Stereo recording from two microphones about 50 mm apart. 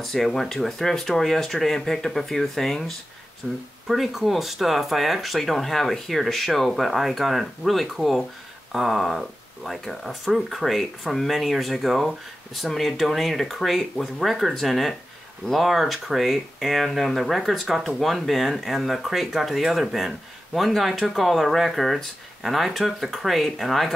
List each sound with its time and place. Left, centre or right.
0.0 s speech: centre